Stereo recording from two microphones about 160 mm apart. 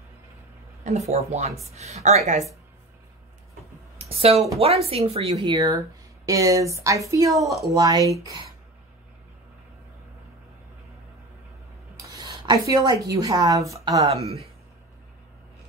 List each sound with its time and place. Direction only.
0.8 s a woman's voice: 45° right (ahead or behind)
4.2 s a woman's voice: 40° right (ahead or behind)
5.5 s speech: 20° right (ahead or behind)
12.2 s speech: 25° right (ahead or behind)
14.0 s a woman's voice: 40° right (ahead or behind)